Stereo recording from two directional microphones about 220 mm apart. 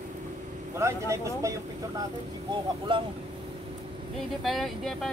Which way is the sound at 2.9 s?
20° right (ahead or behind).